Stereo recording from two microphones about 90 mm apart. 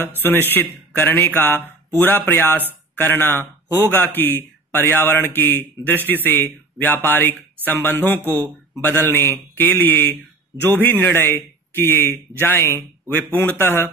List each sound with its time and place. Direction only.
0.0 s a man's voice: 25° left (ahead or behind)